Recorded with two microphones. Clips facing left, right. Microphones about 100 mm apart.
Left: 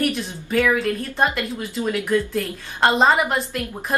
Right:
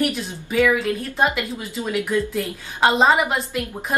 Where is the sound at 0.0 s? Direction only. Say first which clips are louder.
Even; 5° right (ahead or behind).